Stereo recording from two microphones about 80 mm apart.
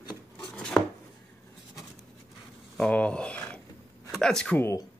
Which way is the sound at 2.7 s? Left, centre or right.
Centre.